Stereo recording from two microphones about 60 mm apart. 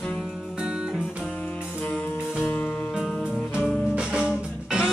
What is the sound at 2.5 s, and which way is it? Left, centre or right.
Music, left.